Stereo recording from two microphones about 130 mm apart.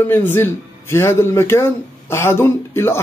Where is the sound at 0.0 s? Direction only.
15° left (ahead or behind).